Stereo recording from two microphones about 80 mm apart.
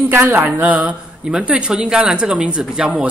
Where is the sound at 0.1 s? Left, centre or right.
Right.